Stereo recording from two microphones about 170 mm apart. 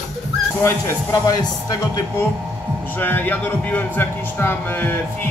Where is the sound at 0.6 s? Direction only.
20° left (ahead or behind).